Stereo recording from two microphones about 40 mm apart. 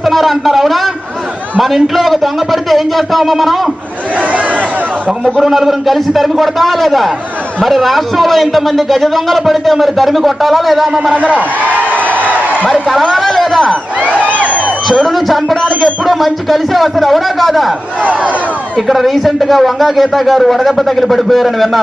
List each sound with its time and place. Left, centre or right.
0.0 s a man's voice: centre
4.3 s chatter: right
5.4 s a man's voice: centre
11.3 s a sound: right
13.1 s a man's voice: centre
14.0 s a sound: right
15.0 s a man's voice: centre
15.5 s music: centre
16.1 s a man's voice: centre
18.0 s speech: right
18.8 s a man's voice: centre